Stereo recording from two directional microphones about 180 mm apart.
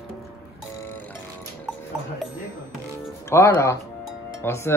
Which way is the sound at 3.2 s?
15° left (ahead or behind).